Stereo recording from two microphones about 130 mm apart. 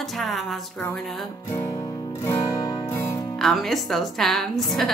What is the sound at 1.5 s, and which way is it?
Music, 25° left (ahead or behind).